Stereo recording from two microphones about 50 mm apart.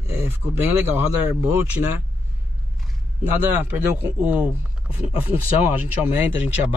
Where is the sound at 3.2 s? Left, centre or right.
Right.